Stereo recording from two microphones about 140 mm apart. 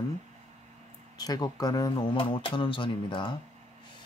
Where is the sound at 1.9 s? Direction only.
40° left (ahead or behind).